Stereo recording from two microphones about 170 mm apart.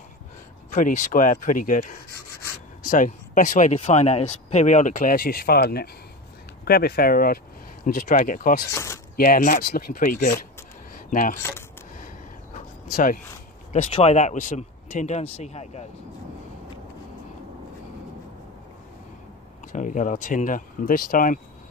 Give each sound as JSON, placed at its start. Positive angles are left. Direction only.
{"t": 0.7, "sound": "speech", "side_deg": 50}
{"t": 8.7, "sound": "a sound", "side_deg": 15}
{"t": 9.1, "sound": "speech", "side_deg": 55}
{"t": 12.9, "sound": "speech", "side_deg": 50}
{"t": 13.9, "sound": "speech", "side_deg": 40}
{"t": 19.7, "sound": "speech", "side_deg": 50}